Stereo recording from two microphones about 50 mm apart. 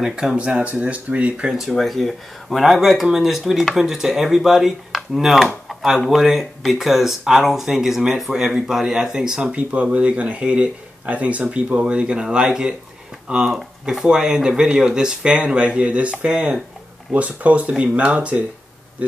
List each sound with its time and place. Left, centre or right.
0.0 s speech: centre
1.6 s speech: centre
9.4 s speech: right
13.8 s speech: centre